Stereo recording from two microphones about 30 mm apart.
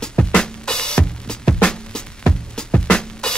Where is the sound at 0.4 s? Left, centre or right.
Left.